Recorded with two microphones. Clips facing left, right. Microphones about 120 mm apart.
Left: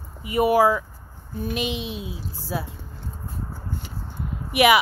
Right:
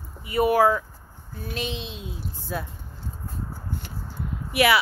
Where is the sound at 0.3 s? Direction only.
10° left (ahead or behind).